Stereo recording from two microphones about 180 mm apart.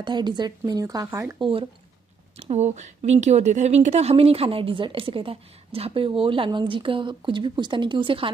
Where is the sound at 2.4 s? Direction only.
35° right (ahead or behind).